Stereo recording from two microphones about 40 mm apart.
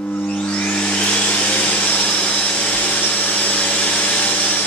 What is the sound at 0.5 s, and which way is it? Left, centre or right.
Vacuum cleaner, left.